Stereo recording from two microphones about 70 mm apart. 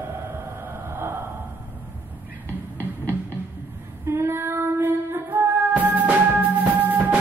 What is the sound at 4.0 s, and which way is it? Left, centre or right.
Female singing, right.